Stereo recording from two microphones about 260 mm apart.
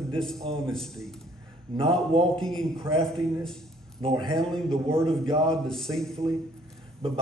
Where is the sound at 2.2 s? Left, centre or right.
Centre.